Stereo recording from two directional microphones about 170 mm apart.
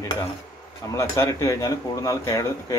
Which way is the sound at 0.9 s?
15° left (ahead or behind).